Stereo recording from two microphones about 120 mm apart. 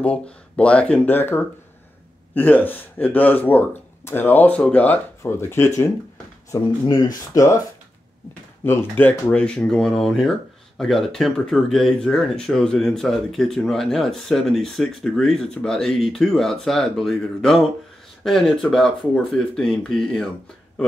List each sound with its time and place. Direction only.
0.0 s speech: 10° left (ahead or behind)
6.5 s speech: 35° left (ahead or behind)
8.6 s speech: 15° left (ahead or behind)